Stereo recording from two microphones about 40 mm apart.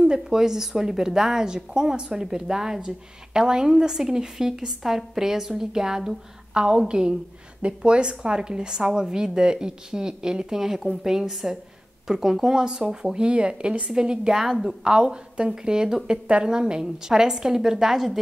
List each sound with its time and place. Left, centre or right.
0.1 s a woman's voice: centre
14.3 s a woman's voice: centre